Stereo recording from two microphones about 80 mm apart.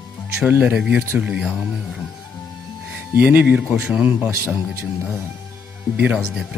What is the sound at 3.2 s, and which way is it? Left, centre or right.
A man's voice, right.